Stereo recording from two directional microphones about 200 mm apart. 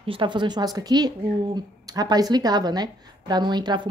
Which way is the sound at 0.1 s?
25° right (ahead or behind).